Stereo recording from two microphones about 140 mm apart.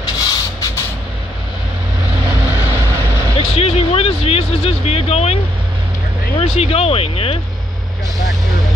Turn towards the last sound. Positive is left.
turn(degrees=45)  # may be behind; listen again after turning